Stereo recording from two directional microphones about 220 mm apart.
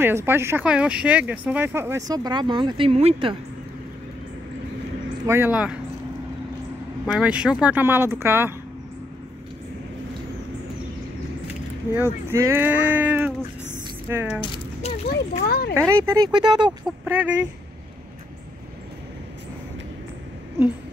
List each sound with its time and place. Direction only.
0.0 s speech: 10° right (ahead or behind); by 3.3 s 25° right (ahead or behind)
5.2 s speech: 10° right (ahead or behind)
7.1 s speech: 5° right (ahead or behind)
11.9 s speech: 10° right (ahead or behind)
14.4 s a sound: 25° left (ahead or behind)
15.0 s speech: 45° left (ahead or behind)
16.0 s speech: 15° right (ahead or behind)
16.8 s speech: 10° right (ahead or behind)